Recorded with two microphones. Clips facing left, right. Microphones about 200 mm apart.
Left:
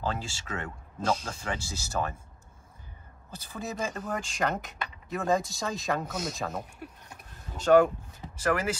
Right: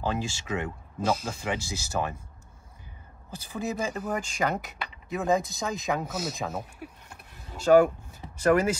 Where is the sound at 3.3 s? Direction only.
10° right (ahead or behind).